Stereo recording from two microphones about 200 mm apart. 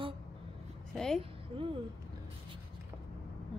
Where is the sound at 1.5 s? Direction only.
25° right (ahead or behind).